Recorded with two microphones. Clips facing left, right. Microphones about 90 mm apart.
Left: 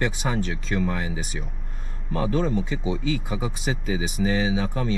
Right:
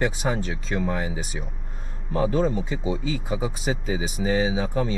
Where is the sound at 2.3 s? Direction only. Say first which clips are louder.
Right 1 dB; 40° right (ahead or behind).